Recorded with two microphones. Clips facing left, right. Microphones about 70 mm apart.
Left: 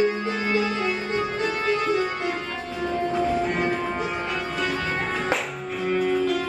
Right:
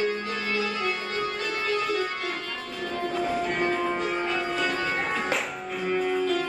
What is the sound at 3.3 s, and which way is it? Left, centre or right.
Music, centre.